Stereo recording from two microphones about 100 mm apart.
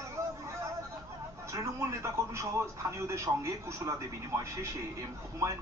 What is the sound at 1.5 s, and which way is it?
Speech, 30° right (ahead or behind).